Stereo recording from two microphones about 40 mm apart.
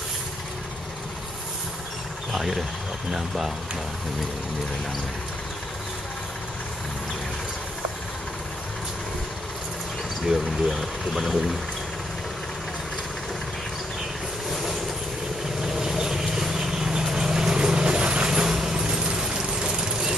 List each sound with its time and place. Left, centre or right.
2.3 s speech: centre
10.2 s speech: centre
15.6 s vehicle: centre